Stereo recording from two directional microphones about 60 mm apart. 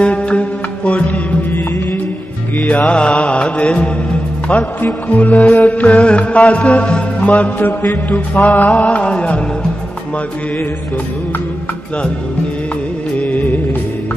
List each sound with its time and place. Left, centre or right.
0.0 s music: centre
1.5 s music: left
2.6 s music: centre
13.2 s music: left